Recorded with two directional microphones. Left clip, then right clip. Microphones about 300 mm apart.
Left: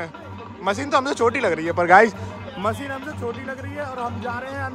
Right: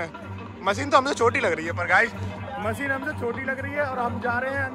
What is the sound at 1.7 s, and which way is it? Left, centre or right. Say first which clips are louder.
Speech: left 9 dB; left.